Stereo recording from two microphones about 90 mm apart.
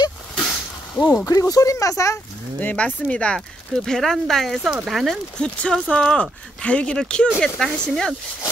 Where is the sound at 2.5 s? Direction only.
15° left (ahead or behind); by 5.1 s centre (ahead or behind).